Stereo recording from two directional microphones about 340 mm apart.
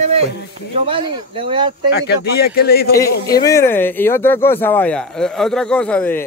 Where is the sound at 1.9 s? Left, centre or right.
Left.